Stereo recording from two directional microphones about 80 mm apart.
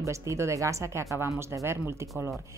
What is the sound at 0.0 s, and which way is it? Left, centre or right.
Speech, right.